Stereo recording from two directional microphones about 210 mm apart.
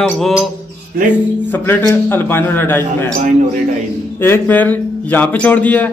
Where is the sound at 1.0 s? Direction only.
40° right (ahead or behind).